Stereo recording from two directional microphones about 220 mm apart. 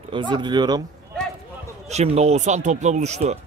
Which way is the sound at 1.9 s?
30° right (ahead or behind).